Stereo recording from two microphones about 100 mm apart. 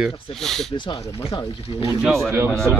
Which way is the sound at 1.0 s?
35° left (ahead or behind).